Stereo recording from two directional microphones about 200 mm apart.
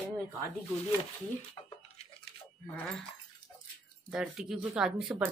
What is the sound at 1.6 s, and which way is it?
Speech, 20° left (ahead or behind).